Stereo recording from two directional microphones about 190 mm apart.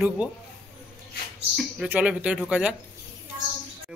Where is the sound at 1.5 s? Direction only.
Centre (ahead or behind).